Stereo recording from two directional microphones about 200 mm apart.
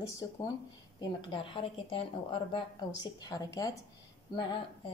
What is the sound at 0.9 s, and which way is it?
Speech, 20° left (ahead or behind).